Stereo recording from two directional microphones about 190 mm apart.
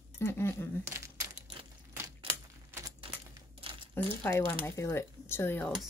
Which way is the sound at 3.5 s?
30° right (ahead or behind).